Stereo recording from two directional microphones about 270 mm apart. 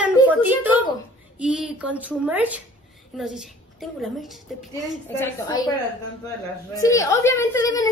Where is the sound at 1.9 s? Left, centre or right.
Centre.